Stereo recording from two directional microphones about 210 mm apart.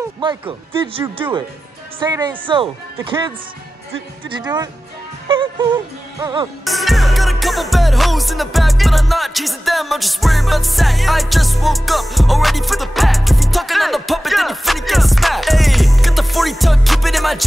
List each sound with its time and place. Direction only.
0.2 s speech: 25° right (ahead or behind)
4.4 s speech: 20° right (ahead or behind)
6.6 s music: centre (ahead or behind)